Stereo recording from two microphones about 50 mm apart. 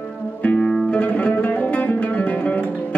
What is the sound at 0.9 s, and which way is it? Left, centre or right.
Music, left.